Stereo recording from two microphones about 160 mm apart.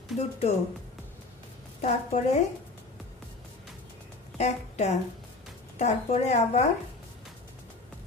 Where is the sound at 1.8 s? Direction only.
45° left (ahead or behind).